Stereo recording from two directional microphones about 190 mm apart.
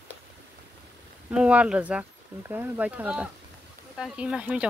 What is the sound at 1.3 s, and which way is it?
Speech, 5° right (ahead or behind).